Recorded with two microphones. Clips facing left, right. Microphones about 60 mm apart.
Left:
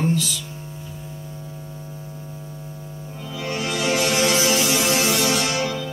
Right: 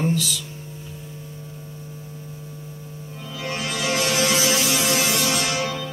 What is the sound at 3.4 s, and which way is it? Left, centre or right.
Music, left.